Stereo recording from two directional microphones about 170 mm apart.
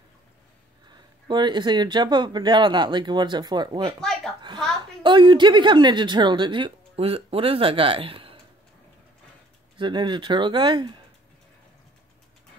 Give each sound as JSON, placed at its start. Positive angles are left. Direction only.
{"t": 0.8, "sound": "a woman's voice", "side_deg": -25}
{"t": 4.0, "sound": "chuckle", "side_deg": 5}
{"t": 5.0, "sound": "a woman's voice", "side_deg": -30}
{"t": 9.8, "sound": "a woman's voice", "side_deg": -25}